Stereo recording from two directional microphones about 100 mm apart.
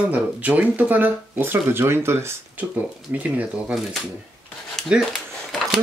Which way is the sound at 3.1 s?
15° right (ahead or behind).